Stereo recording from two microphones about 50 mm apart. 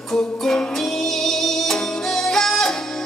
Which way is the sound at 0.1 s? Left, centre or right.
Centre.